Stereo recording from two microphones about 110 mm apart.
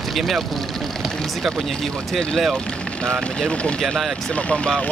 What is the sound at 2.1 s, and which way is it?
Speech, 5° left (ahead or behind).